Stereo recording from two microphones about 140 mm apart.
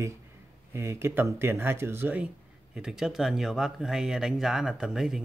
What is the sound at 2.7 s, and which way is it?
Speech, 5° right (ahead or behind).